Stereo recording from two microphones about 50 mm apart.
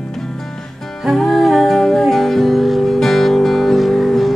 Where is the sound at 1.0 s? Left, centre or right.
Centre.